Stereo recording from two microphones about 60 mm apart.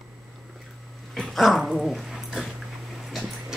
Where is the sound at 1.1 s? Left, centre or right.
Centre.